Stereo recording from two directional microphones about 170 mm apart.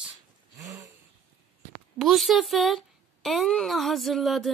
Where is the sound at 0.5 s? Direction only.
20° right (ahead or behind).